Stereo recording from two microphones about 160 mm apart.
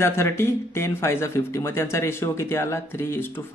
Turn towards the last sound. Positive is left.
turn(degrees=15)  # may be behind; listen again after turning